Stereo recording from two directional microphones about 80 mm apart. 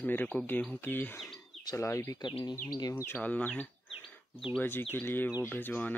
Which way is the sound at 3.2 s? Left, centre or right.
Centre.